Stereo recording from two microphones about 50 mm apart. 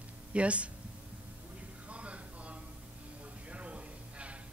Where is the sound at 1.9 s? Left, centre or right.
Right.